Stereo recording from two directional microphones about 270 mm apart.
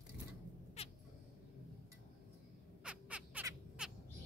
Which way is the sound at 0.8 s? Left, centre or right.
Left.